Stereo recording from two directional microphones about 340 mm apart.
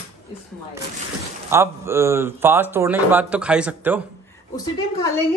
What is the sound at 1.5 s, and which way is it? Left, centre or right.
A man's voice, centre.